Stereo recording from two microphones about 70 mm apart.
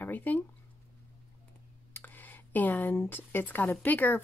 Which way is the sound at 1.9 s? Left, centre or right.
Left.